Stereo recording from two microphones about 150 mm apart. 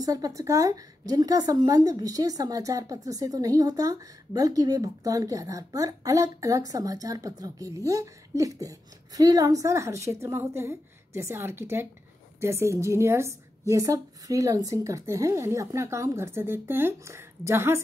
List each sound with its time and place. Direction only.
0.0 s a woman's voice: 25° right (ahead or behind)